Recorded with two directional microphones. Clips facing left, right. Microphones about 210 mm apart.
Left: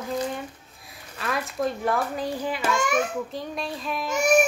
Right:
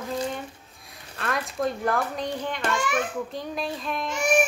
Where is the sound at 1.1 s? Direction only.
Centre (ahead or behind).